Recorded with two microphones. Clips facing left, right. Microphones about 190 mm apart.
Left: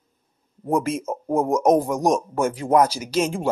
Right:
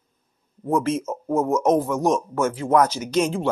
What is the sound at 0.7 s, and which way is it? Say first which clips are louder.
A man's voice: right 1 dB; 10° left (ahead or behind).